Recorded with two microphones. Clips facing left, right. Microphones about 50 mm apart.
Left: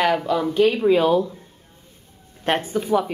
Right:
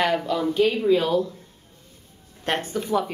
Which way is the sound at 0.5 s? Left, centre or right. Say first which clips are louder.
Left 3 dB; left.